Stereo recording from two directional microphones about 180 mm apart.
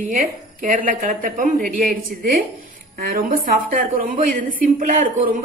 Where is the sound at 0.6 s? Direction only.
50° right (ahead or behind).